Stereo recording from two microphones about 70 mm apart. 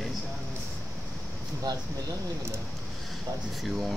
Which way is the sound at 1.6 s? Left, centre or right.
Right.